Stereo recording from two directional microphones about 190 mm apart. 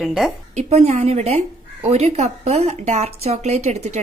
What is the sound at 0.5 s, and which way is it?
A woman's voice, 35° right (ahead or behind).